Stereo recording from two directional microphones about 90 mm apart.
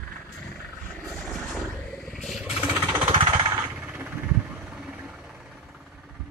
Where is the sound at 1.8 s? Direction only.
10° left (ahead or behind).